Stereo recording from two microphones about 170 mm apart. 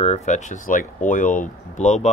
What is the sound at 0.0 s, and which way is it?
Speech, 40° left (ahead or behind).